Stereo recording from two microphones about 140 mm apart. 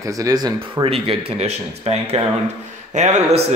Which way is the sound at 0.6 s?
35° right (ahead or behind).